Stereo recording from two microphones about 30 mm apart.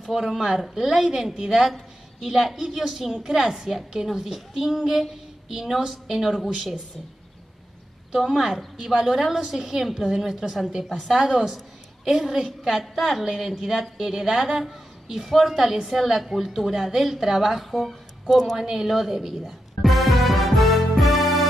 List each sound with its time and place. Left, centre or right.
0.0 s a woman's voice: centre
6.1 s a woman's voice: centre
8.2 s a woman's voice: centre
17.6 s speech: centre
18.6 s a woman's voice: centre
19.8 s music: centre